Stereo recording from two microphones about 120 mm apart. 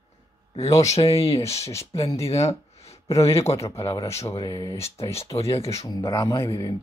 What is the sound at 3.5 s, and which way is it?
Speech, 25° left (ahead or behind).